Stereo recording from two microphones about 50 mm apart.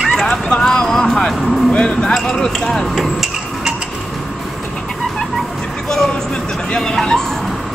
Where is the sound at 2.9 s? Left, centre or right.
Centre.